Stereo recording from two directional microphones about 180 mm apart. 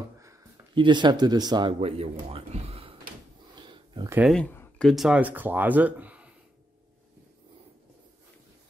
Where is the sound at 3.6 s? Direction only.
25° right (ahead or behind).